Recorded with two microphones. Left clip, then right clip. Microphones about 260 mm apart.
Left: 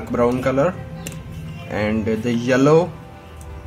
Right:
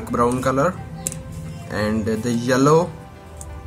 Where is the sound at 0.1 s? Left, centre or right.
Centre.